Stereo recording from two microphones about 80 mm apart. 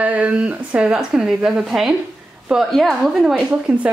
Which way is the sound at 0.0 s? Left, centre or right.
Centre.